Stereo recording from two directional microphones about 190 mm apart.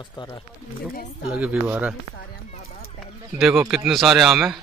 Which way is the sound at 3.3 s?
Centre (ahead or behind).